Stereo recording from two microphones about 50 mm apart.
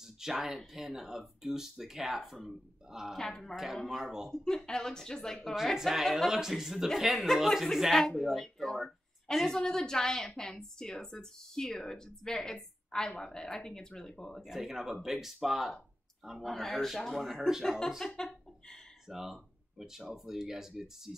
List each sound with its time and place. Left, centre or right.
0.0 s a sound: centre
0.7 s speech: centre
3.2 s speech: centre
3.5 s speech: centre
4.3 s speech: centre
5.8 s speech: centre
14.4 s speech: centre
17.0 s speech: centre
18.1 s a sound: centre
19.0 s speech: centre